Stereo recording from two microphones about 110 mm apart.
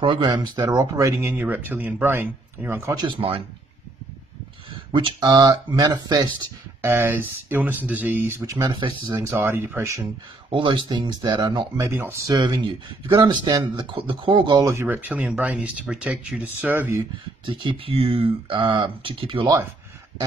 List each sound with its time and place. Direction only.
0.0 s speech: 50° right (ahead or behind); by 3.0 s 20° right (ahead or behind)
3.0 s speech: 50° right (ahead or behind)
4.9 s speech: 45° right (ahead or behind)
6.8 s speech: 20° right (ahead or behind)
8.6 s speech: 45° right (ahead or behind)
9.2 s speech: 20° right (ahead or behind)
10.5 s speech: 45° right (ahead or behind)
14.6 s speech: 25° right (ahead or behind)
17.5 s speech: 50° right (ahead or behind)